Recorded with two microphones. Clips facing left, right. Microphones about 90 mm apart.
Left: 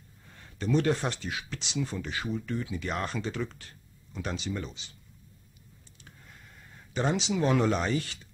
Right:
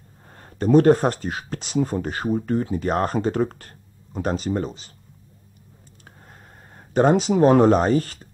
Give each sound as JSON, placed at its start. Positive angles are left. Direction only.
{"t": 0.3, "sound": "speech", "side_deg": -45}
{"t": 6.9, "sound": "speech", "side_deg": -45}